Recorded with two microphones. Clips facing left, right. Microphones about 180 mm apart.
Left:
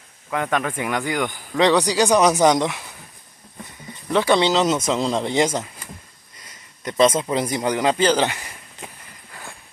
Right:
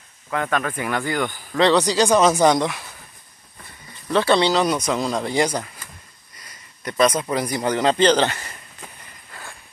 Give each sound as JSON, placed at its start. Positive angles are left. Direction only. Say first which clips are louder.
{"t": 0.3, "sound": "speech", "louder": "even", "side_deg": 15}
{"t": 4.1, "sound": "speech", "louder": "even", "side_deg": 15}
{"t": 6.8, "sound": "speech", "louder": "left 2 dB", "side_deg": 20}